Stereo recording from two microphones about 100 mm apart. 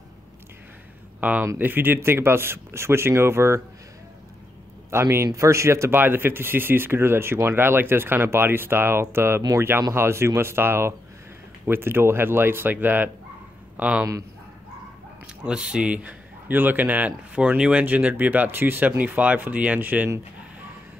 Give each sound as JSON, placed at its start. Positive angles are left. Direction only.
{"t": 1.4, "sound": "speech", "side_deg": -25}
{"t": 4.9, "sound": "speech", "side_deg": -25}
{"t": 15.4, "sound": "a man's voice", "side_deg": -10}